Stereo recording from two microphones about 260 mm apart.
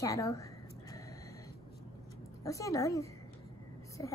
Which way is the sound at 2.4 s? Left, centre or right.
Centre.